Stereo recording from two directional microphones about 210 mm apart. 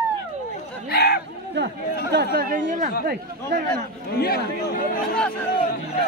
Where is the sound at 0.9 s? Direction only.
50° left (ahead or behind).